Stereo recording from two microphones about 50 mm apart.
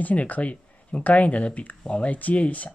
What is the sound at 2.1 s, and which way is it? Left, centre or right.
Speech, left.